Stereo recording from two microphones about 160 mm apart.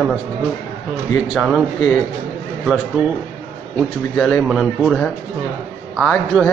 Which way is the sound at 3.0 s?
30° left (ahead or behind).